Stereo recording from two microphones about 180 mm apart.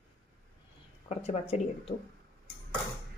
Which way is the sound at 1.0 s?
35° left (ahead or behind).